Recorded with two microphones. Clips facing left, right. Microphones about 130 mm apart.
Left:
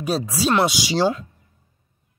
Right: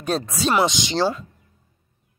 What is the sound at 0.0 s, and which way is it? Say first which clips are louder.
Speech: left 1 dB; 5° left (ahead or behind).